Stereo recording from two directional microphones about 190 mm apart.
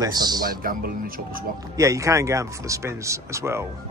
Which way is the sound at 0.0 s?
20° right (ahead or behind).